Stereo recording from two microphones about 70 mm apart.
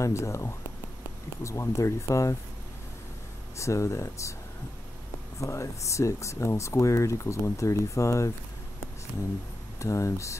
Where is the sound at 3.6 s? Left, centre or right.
Left.